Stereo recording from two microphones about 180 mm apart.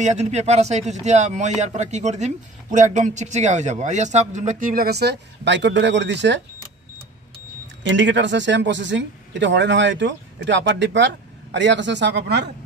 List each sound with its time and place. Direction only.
0.0 s speech: 40° right (ahead or behind); by 6.4 s 75° right (ahead or behind)
7.8 s speech: 80° right